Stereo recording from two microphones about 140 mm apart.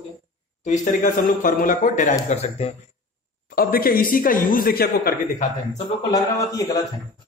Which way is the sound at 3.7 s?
90° left.